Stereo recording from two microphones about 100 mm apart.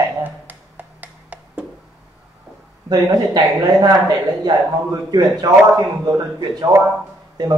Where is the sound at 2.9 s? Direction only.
40° right (ahead or behind).